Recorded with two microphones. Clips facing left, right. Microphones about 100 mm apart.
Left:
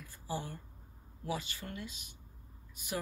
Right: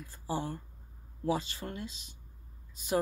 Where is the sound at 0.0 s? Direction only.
30° right (ahead or behind).